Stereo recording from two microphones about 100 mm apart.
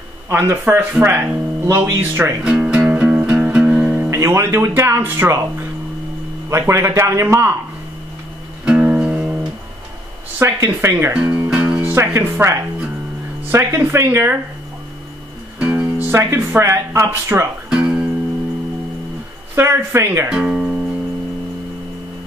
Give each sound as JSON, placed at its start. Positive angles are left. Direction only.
{"t": 0.3, "sound": "speech", "side_deg": -25}
{"t": 2.5, "sound": "music", "side_deg": -10}
{"t": 4.1, "sound": "speech", "side_deg": -25}
{"t": 6.7, "sound": "speech", "side_deg": -30}
{"t": 8.6, "sound": "music", "side_deg": -15}
{"t": 10.4, "sound": "speech", "side_deg": -25}
{"t": 11.2, "sound": "music", "side_deg": -20}
{"t": 11.8, "sound": "speech", "side_deg": -25}
{"t": 15.6, "sound": "music", "side_deg": -20}
{"t": 16.1, "sound": "speech", "side_deg": -25}
{"t": 17.6, "sound": "guitar", "side_deg": -10}
{"t": 19.5, "sound": "speech", "side_deg": -25}
{"t": 20.2, "sound": "speech", "side_deg": -10}